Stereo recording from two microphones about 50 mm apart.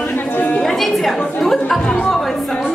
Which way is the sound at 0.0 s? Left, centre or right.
Left.